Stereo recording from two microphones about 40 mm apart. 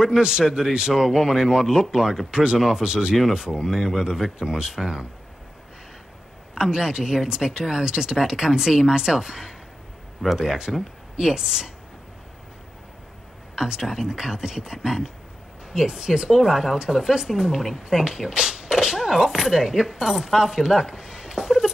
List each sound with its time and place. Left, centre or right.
0.0 s speech: centre
2.8 s speech: right
6.6 s speech: centre
11.1 s speech: centre
13.7 s speech: centre